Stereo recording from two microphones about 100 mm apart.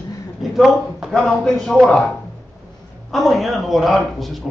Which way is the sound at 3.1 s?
Centre (ahead or behind).